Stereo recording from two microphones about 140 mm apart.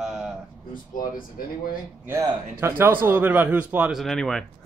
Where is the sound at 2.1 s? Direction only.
20° right (ahead or behind).